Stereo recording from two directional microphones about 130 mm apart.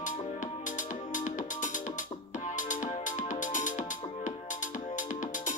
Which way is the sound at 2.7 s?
80° left.